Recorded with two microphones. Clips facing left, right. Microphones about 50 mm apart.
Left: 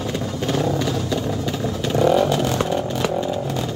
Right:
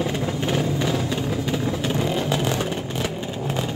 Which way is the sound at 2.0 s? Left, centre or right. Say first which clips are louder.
Left 10 dB; left.